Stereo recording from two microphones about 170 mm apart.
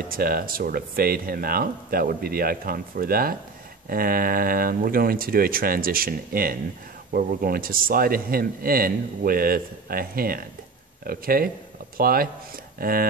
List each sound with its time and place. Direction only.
0.1 s a man's voice: 60° right (ahead or behind)